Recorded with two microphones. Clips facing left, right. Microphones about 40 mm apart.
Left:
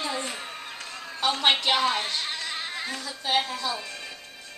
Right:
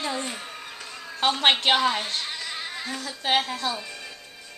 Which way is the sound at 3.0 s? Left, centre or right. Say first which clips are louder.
Right 3 dB; right.